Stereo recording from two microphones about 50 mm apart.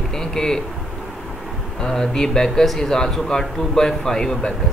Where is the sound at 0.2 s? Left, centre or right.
Centre.